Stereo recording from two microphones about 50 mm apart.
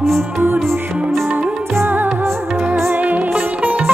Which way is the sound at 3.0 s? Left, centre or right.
Right.